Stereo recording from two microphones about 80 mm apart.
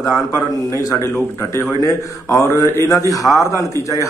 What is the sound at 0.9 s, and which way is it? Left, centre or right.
A man's voice, left.